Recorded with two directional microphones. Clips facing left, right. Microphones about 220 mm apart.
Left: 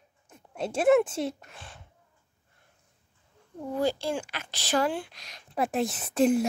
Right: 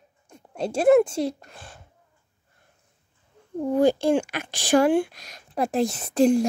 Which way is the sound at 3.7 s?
55° right (ahead or behind).